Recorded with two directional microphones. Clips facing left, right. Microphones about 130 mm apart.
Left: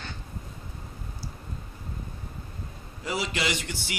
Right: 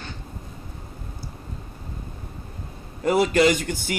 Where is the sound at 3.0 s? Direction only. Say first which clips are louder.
Right 12 dB; 50° right (ahead or behind).